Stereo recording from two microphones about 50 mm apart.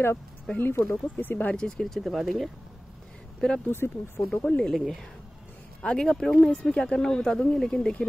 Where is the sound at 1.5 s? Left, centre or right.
Centre.